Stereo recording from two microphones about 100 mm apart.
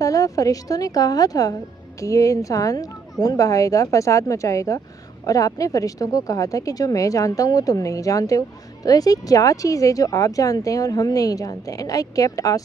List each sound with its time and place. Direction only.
0.0 s a woman's voice: 35° left (ahead or behind)